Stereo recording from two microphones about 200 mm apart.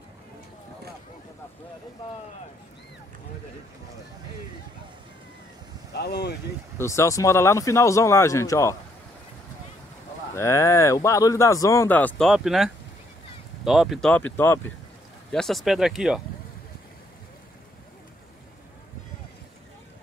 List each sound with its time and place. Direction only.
5.9 s speech: 55° left (ahead or behind)
6.8 s speech: 15° left (ahead or behind)
10.3 s speech: 15° left (ahead or behind); by 16.2 s 5° right (ahead or behind)